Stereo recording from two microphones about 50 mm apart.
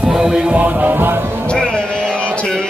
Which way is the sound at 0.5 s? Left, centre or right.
Right.